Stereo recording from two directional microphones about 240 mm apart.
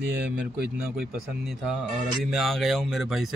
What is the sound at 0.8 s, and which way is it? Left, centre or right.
A man's voice, centre.